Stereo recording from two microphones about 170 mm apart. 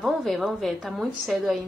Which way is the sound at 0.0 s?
Centre (ahead or behind).